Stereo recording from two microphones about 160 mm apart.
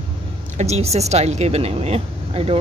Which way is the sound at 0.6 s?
40° right (ahead or behind).